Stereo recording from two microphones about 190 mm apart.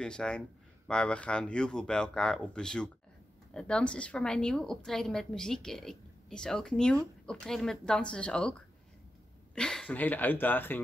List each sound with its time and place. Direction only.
0.0 s a woman's voice: 5° left (ahead or behind)